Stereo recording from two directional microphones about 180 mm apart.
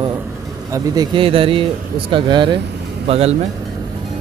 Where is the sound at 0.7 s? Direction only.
20° right (ahead or behind).